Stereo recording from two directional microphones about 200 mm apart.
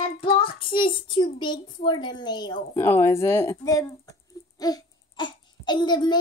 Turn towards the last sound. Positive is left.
turn(degrees=20)  # may be behind; listen again after turning